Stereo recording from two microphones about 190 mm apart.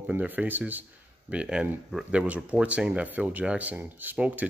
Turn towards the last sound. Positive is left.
turn(degrees=-10)  # may be behind; listen again after turning